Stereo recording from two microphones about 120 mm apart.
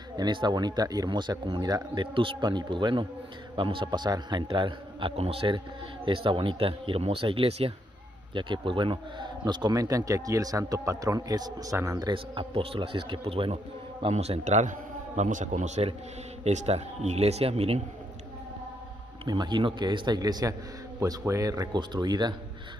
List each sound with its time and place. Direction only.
0.2 s a man's voice: 40° right (ahead or behind); by 7.7 s 55° right (ahead or behind)
8.4 s a man's voice: 45° right (ahead or behind); by 12.1 s 25° right (ahead or behind)
12.1 s a man's voice: 45° right (ahead or behind); by 15.9 s 75° right (ahead or behind)
16.4 s speech: 65° right (ahead or behind)
19.2 s speech: 35° right (ahead or behind)